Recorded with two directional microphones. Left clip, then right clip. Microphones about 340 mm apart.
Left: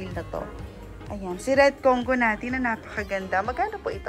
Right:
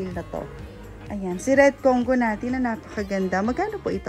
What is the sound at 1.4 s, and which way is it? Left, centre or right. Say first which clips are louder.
Speech: right 2 dB; centre.